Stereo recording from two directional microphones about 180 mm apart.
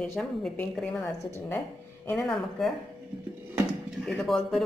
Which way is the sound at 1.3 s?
15° left (ahead or behind).